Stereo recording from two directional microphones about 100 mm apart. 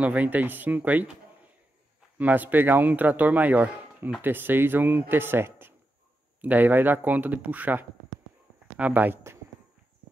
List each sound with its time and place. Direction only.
0.0 s speech: 15° right (ahead or behind)
2.1 s speech: 15° right (ahead or behind)